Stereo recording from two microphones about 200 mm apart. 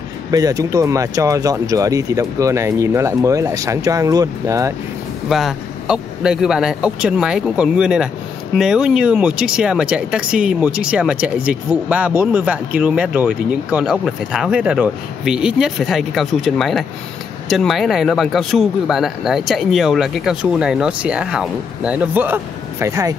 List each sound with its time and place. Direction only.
0.3 s speech: 20° right (ahead or behind)
5.3 s speech: centre (ahead or behind)